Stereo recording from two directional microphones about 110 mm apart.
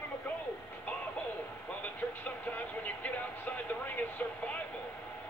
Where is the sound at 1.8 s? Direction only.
15° left (ahead or behind).